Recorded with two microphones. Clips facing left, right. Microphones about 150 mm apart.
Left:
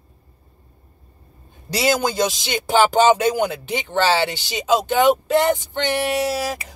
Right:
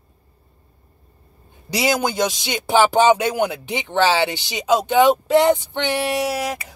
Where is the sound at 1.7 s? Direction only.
15° right (ahead or behind).